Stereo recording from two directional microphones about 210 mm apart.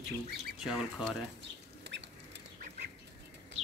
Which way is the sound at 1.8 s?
55° right (ahead or behind).